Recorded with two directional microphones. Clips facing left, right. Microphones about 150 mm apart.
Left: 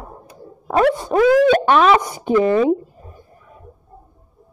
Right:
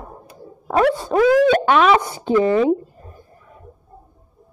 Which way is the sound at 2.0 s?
15° left (ahead or behind).